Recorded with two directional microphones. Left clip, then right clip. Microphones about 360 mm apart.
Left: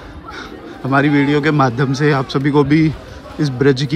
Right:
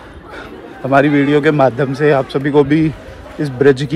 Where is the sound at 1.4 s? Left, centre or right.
Centre.